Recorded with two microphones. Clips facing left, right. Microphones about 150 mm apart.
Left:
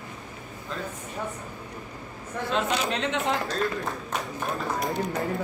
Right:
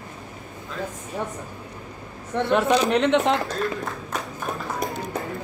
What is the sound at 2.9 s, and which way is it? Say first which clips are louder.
Speech: right 8 dB; 70° right (ahead or behind).